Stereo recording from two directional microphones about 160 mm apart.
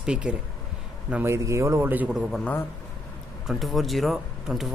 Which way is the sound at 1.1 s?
15° right (ahead or behind).